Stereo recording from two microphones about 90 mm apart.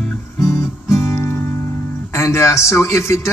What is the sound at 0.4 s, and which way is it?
Music, 35° left (ahead or behind).